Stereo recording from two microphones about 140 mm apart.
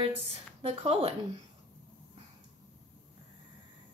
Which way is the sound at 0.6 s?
45° right (ahead or behind).